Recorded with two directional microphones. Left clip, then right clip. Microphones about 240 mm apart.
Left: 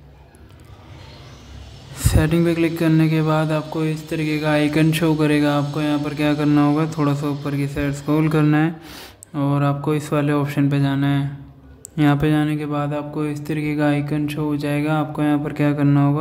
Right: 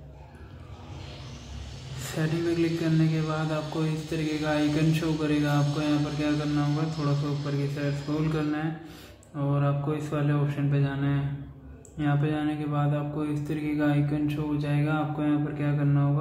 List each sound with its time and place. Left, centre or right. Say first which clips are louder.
2.1 s speech: left 8 dB; left